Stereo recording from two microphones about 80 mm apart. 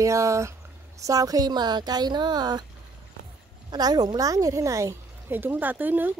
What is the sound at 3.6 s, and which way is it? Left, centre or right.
A woman's voice, right.